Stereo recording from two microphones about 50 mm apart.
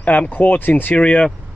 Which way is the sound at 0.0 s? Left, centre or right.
Left.